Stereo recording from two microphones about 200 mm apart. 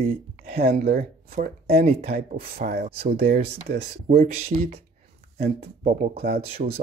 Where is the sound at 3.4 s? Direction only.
55° right (ahead or behind).